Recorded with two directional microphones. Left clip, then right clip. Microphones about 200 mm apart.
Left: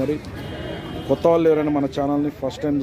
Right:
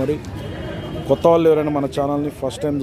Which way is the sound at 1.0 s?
10° right (ahead or behind).